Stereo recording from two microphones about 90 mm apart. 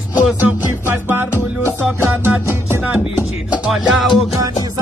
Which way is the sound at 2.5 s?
25° right (ahead or behind).